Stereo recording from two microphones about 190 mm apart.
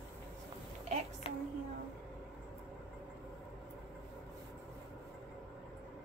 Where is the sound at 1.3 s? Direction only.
30° left (ahead or behind).